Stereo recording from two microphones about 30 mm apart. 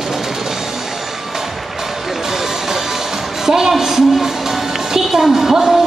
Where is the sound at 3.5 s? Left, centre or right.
Centre.